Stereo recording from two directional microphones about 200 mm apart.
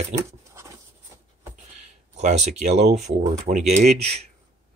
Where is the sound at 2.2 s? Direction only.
35° right (ahead or behind).